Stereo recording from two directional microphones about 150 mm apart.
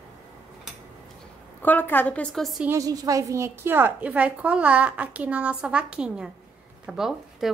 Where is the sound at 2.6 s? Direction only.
20° right (ahead or behind).